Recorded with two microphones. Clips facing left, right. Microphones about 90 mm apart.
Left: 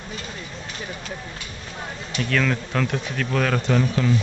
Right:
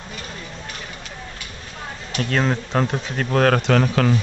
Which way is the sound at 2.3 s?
35° right (ahead or behind).